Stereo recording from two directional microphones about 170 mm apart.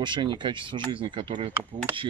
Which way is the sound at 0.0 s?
25° right (ahead or behind).